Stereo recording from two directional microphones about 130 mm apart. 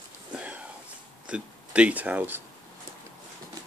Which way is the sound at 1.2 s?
10° right (ahead or behind).